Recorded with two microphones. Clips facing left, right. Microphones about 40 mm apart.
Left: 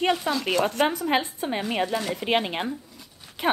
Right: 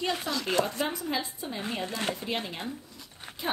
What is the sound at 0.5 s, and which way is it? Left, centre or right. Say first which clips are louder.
Speech: left 5 dB; left.